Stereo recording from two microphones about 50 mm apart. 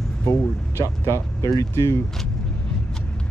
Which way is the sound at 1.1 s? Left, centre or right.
Left.